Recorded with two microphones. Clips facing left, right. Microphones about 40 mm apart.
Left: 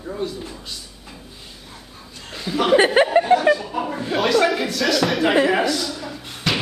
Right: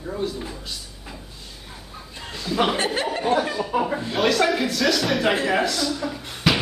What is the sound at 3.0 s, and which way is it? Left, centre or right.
Speech, left.